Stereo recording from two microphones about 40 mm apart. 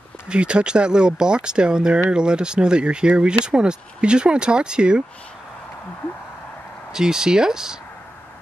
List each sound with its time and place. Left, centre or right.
0.3 s speech: right
6.9 s speech: centre